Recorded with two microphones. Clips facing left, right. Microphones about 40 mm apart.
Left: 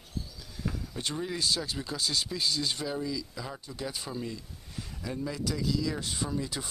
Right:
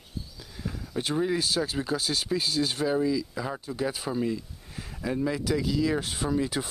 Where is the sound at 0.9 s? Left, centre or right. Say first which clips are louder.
Right 10 dB; centre.